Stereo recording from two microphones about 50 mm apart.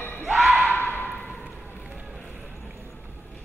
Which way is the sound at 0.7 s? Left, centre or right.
Left.